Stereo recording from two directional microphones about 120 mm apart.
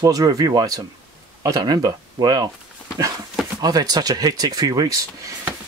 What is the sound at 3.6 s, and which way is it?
Speech, 35° right (ahead or behind).